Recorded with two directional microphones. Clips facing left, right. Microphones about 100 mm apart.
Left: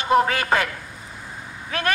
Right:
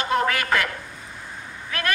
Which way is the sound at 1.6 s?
30° left (ahead or behind).